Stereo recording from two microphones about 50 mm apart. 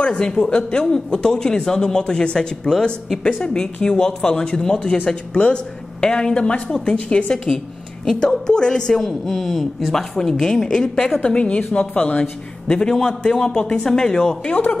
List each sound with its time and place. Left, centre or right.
0.2 s a woman's voice: centre
6.0 s a woman's voice: centre
7.4 s a woman's voice: centre
11.2 s a woman's voice: left